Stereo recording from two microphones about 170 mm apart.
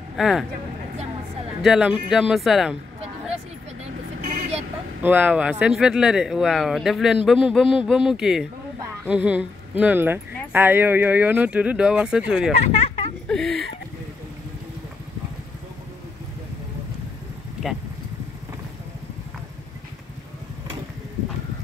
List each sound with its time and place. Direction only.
0.1 s speech: centre (ahead or behind)
1.6 s speech: 5° right (ahead or behind)
5.0 s speech: 10° right (ahead or behind)
12.6 s a sound: 40° left (ahead or behind)
13.3 s a sound: centre (ahead or behind)
17.6 s vehicle: centre (ahead or behind)